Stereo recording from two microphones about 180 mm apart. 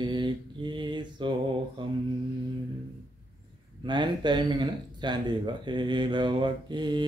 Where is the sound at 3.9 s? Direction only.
25° right (ahead or behind).